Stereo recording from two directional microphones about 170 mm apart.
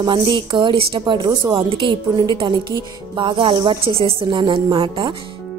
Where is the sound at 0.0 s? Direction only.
30° right (ahead or behind).